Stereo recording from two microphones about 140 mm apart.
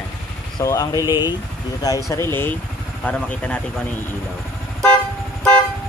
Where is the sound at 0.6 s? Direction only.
25° left (ahead or behind).